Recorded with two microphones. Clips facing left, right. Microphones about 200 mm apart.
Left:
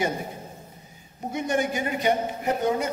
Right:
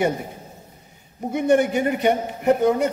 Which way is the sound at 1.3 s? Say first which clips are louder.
Right 8 dB; 60° right (ahead or behind).